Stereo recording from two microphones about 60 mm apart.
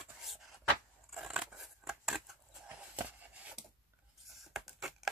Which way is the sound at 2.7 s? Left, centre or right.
Right.